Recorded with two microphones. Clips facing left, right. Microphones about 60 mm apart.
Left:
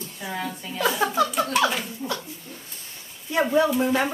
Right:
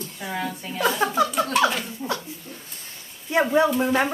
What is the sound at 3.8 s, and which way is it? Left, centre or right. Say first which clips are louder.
Speech: right 1 dB; centre.